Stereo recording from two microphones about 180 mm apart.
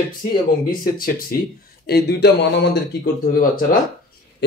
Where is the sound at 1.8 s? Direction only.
65° left (ahead or behind).